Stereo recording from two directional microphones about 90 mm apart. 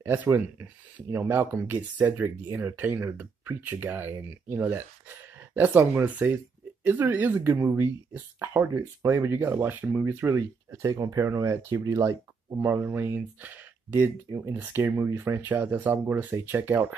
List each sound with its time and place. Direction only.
0.0 s speech: 25° right (ahead or behind)
12.5 s speech: 25° right (ahead or behind)